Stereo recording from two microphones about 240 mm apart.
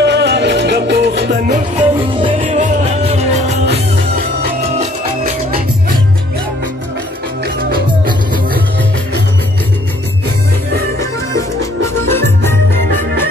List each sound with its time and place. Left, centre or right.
0.0 s music: right
1.5 s music: right
7.4 s music: right
11.0 s music: centre